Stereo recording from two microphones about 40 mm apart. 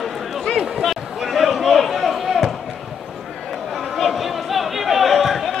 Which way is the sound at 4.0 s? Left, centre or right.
Centre.